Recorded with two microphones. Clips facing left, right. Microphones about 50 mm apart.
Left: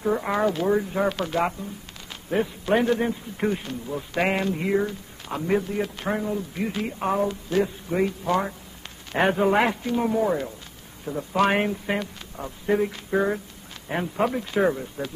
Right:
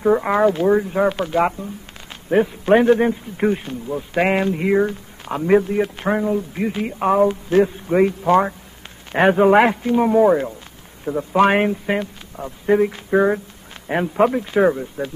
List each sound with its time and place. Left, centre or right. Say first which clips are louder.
0.0 s speech: right 7 dB; right
2.2 s speech: right 8 dB; right